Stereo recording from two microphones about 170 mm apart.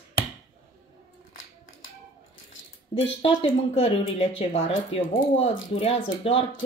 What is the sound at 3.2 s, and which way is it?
Speech, 30° left (ahead or behind).